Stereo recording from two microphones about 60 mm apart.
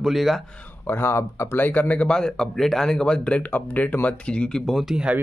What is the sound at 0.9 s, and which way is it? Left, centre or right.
Speech, left.